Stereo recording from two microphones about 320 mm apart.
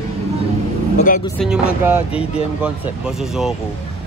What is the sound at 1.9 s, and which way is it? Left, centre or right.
Speech, centre.